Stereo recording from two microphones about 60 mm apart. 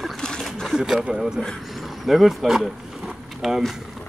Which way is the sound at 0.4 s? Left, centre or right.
Centre.